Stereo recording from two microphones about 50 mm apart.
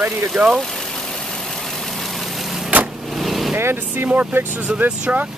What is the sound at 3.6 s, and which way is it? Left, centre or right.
Speech, right.